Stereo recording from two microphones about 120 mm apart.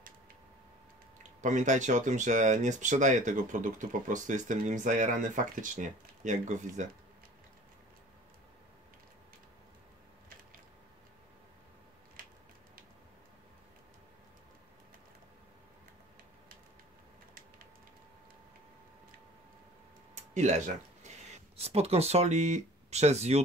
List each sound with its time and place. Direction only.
1.4 s speech: 90° right
20.2 s a sound: 85° right
21.5 s speech: 60° right (ahead or behind)